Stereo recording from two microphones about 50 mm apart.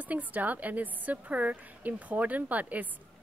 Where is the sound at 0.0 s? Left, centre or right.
Right.